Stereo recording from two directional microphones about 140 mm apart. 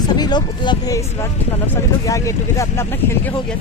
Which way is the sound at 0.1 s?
30° left (ahead or behind).